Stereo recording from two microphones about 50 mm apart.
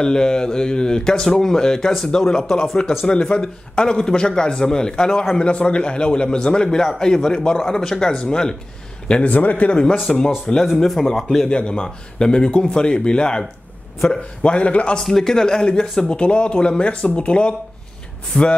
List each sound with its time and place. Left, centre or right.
0.0 s a man's voice: centre
9.3 s speech: left
10.0 s a man's voice: centre
11.4 s a man's voice: centre
15.0 s a man's voice: centre